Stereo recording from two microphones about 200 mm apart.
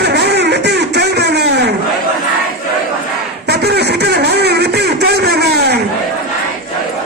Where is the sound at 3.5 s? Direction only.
55° right (ahead or behind).